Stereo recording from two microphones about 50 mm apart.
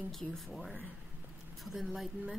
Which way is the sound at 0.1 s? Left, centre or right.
Centre.